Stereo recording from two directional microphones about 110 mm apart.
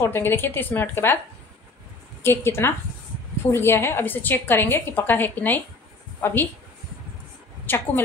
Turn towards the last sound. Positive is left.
turn(degrees=15)  # may be behind; listen again after turning